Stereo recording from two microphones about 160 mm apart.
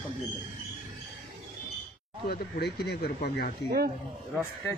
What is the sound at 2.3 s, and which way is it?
Speech, 85° left.